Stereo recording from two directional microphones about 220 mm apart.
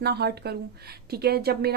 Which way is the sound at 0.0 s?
45° right (ahead or behind).